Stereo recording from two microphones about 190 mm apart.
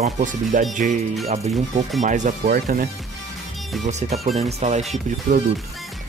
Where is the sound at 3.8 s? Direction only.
35° right (ahead or behind).